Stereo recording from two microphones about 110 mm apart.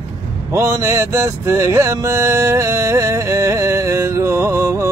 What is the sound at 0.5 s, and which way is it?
Music, 25° right (ahead or behind).